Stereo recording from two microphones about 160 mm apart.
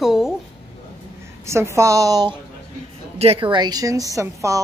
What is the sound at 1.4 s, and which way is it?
Speech, 15° right (ahead or behind).